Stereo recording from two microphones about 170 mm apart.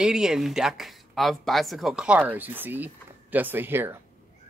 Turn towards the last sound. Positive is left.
turn(degrees=-10)  # may be behind; listen again after turning